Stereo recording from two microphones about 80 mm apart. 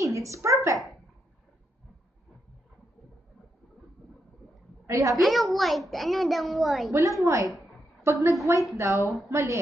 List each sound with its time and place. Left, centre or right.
0.0 s a sound: right
4.8 s a woman's voice: right
5.2 s a child's voice: centre
6.9 s a woman's voice: right